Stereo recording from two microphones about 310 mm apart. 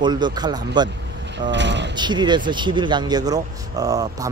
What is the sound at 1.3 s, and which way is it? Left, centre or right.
Mechanisms, right.